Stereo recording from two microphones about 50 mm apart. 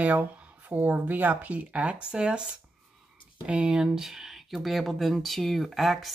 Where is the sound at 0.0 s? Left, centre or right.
Right.